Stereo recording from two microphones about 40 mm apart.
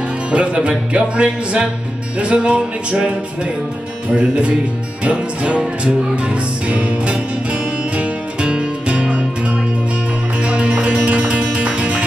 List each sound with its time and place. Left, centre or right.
0.3 s music: right
4.1 s music: right